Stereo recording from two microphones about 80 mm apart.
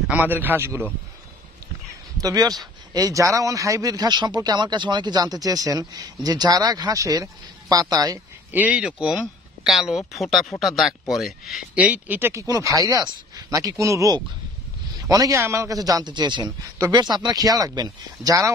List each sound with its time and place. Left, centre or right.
0.1 s a man's voice: right
2.1 s speech: right
8.5 s speech: centre
11.7 s a man's voice: centre
12.4 s speech: right
16.4 s speech: right